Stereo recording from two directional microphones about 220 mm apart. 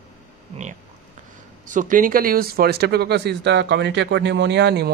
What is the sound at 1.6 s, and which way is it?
Speech, 35° right (ahead or behind).